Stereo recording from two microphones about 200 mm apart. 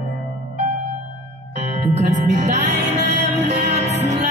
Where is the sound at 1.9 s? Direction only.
35° right (ahead or behind).